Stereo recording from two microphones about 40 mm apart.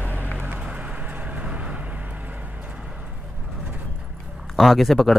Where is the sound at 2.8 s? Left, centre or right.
Right.